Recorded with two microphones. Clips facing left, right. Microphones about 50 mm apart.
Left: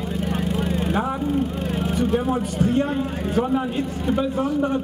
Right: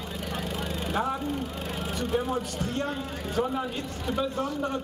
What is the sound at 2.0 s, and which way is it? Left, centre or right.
Speech, centre.